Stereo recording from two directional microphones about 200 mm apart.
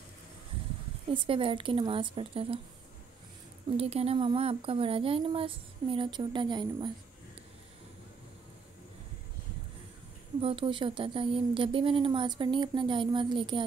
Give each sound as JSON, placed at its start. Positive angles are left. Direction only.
{"t": 1.1, "sound": "speech", "side_deg": -25}
{"t": 3.7, "sound": "speech", "side_deg": -30}
{"t": 10.4, "sound": "speech", "side_deg": -25}